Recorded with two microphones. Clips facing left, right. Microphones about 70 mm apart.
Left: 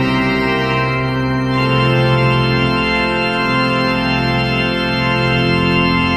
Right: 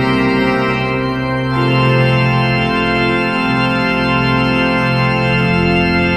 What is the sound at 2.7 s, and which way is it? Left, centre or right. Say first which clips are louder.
Organ: right 1 dB; right.